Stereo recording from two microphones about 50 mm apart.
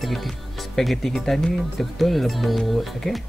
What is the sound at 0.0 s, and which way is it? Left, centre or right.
Speech, centre.